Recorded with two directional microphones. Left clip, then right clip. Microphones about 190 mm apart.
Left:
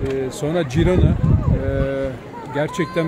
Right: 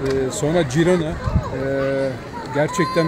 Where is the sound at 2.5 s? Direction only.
5° right (ahead or behind).